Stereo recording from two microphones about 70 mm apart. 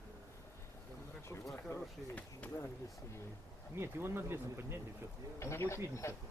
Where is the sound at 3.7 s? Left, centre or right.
Right.